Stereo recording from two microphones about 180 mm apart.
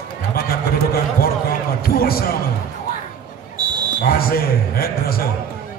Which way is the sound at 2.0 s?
55° left (ahead or behind).